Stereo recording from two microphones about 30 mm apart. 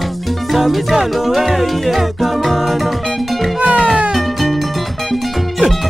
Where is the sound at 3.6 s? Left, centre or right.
Right.